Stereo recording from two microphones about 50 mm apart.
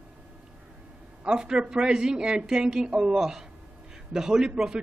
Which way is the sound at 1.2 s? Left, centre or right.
Centre.